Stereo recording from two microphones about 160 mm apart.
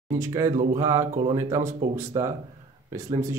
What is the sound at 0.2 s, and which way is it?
Speech, 20° right (ahead or behind).